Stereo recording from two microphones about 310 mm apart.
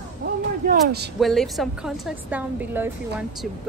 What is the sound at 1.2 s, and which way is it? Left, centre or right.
A woman's voice, centre.